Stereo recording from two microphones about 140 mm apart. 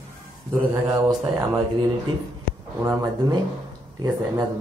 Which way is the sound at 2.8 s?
30° right (ahead or behind).